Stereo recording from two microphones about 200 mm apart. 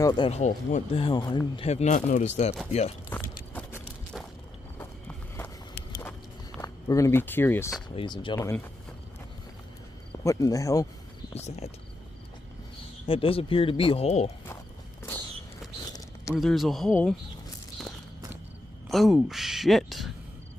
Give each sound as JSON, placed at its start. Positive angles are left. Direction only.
{"t": 0.0, "sound": "speech", "side_deg": 25}
{"t": 1.0, "sound": "speech", "side_deg": 25}
{"t": 3.1, "sound": "walk", "side_deg": 10}
{"t": 6.6, "sound": "speech", "side_deg": 15}
{"t": 7.9, "sound": "speech", "side_deg": 25}
{"t": 8.4, "sound": "speech", "side_deg": 10}
{"t": 10.2, "sound": "speech", "side_deg": 15}
{"t": 11.3, "sound": "speech", "side_deg": 35}
{"t": 13.0, "sound": "speech", "side_deg": 25}
{"t": 16.3, "sound": "speech", "side_deg": 0}
{"t": 18.9, "sound": "speech", "side_deg": 0}